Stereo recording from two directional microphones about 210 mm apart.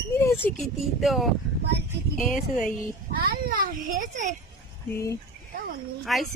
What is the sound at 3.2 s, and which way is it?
A child's voice, 45° right (ahead or behind).